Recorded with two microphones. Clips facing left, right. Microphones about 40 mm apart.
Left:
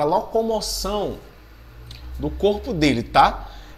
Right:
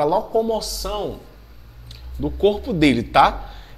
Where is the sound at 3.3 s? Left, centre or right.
Centre.